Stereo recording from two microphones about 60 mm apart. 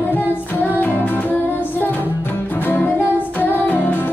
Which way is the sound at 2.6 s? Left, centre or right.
Left.